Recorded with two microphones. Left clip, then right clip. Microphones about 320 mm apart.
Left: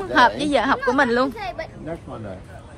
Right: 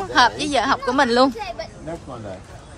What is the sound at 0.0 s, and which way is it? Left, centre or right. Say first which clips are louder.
Speech: even; centre.